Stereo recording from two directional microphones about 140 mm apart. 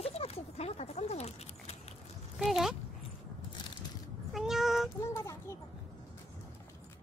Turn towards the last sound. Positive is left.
turn(degrees=20)  # may be behind; listen again after turning